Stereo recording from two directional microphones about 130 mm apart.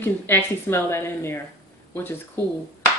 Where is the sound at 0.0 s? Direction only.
15° left (ahead or behind).